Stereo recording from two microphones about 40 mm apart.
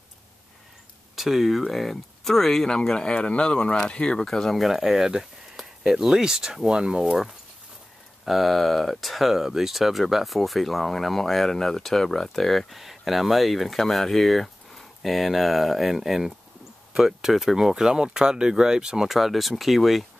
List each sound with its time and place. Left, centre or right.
1.1 s speech: centre; by 4.3 s left
4.3 s speech: centre
19.0 s speech: centre